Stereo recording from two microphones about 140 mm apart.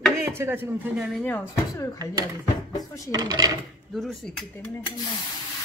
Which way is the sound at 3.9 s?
Centre (ahead or behind).